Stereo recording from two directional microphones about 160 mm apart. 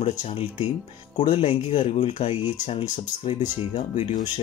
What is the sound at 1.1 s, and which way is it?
Speech, 45° left (ahead or behind).